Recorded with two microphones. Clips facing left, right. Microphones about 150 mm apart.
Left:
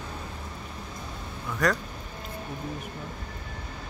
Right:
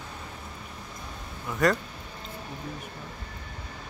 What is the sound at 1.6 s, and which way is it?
Speech, centre (ahead or behind).